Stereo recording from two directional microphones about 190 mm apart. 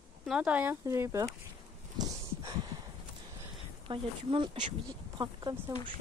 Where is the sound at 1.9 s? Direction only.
20° right (ahead or behind).